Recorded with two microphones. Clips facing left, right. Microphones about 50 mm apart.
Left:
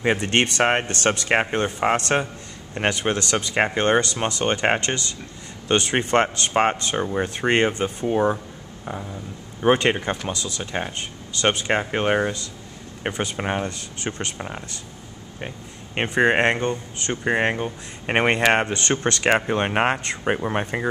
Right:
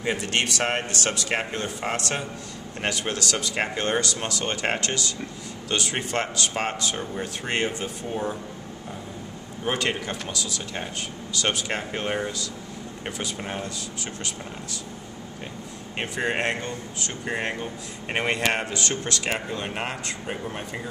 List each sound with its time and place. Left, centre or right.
0.0 s speech: left
9.6 s speech: left
16.0 s speech: left